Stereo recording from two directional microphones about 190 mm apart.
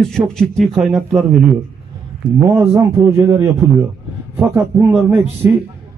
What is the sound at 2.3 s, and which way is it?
A man's voice, 15° right (ahead or behind).